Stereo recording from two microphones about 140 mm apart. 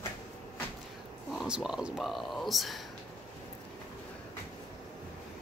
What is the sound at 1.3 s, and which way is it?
Speech, 5° right (ahead or behind).